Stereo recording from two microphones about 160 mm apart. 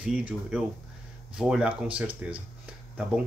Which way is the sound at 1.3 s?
5° right (ahead or behind).